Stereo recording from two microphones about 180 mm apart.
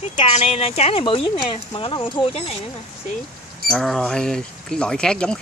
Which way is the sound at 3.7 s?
Centre (ahead or behind).